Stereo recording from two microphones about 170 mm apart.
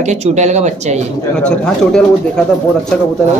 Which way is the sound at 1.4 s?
5° left (ahead or behind).